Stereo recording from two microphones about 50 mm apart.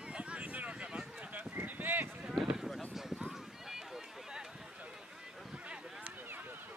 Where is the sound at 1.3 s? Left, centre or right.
Right.